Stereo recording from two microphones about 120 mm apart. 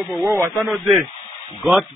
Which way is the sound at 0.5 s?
5° right (ahead or behind).